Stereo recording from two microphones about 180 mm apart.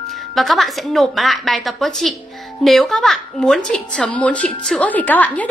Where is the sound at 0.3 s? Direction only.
Centre (ahead or behind).